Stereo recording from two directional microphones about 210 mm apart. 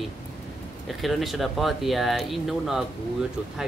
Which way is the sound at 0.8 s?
Centre (ahead or behind).